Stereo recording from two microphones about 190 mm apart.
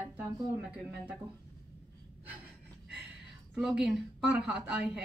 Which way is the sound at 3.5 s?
5° right (ahead or behind).